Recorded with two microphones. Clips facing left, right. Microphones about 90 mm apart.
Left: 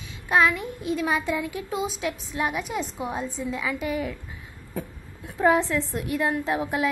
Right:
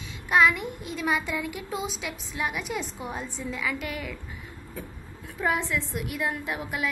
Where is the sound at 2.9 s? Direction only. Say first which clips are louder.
Left 5 dB; 5° left (ahead or behind).